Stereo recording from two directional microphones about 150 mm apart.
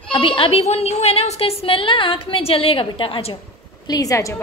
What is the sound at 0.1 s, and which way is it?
A woman's voice, 35° left (ahead or behind).